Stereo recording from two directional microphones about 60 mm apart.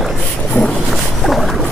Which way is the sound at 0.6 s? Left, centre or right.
Left.